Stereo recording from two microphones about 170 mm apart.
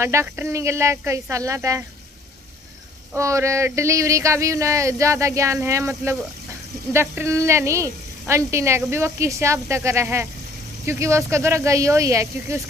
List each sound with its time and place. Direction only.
0.0 s speech: 15° right (ahead or behind)
3.2 s speech: 15° right (ahead or behind)